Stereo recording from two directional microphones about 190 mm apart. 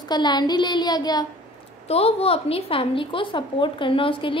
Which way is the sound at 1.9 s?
30° left (ahead or behind).